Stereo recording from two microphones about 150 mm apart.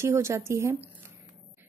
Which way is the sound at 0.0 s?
20° right (ahead or behind).